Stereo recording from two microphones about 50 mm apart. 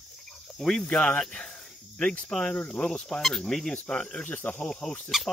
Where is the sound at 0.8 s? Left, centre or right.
Centre.